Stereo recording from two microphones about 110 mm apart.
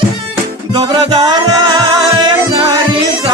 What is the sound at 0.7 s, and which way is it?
Music, 40° right (ahead or behind).